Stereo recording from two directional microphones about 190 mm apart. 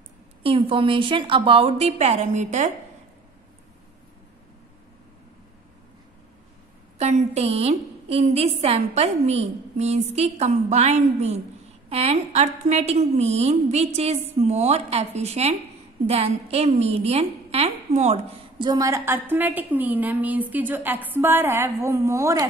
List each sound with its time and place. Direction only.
0.4 s a woman's voice: 30° right (ahead or behind)
7.0 s a woman's voice: 35° right (ahead or behind)
18.6 s a woman's voice: 20° right (ahead or behind)